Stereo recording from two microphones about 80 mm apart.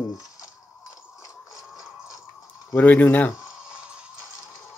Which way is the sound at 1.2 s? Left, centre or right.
Left.